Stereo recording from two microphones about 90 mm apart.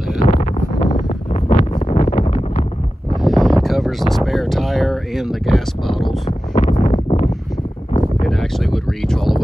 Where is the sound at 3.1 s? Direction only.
Centre (ahead or behind).